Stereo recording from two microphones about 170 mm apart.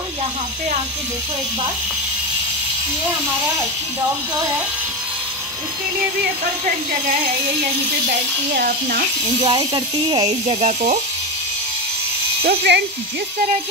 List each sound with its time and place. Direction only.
8.5 s speech: 60° right (ahead or behind)
9.4 s speech: 25° right (ahead or behind)
10.5 s speech: 40° right (ahead or behind)
12.4 s speech: 80° right